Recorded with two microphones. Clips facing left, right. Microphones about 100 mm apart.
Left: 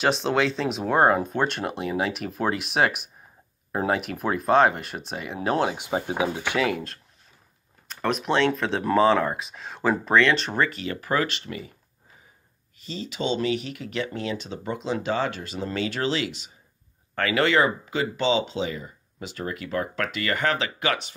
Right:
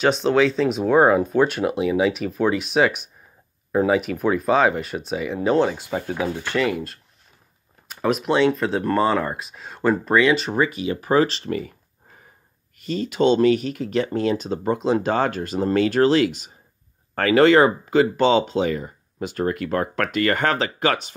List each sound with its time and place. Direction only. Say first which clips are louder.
0.0 s speech: right 5 dB; centre (ahead or behind)
5.8 s speech: even; 20° left (ahead or behind)
6.6 s speech: right 4 dB; centre (ahead or behind); by 11.7 s 40° right (ahead or behind)
12.7 s speech: right 9 dB; 55° right (ahead or behind)